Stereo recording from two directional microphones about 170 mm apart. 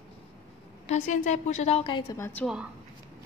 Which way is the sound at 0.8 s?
45° left (ahead or behind).